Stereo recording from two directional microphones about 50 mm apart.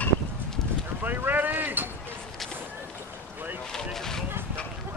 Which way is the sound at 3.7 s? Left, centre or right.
Centre.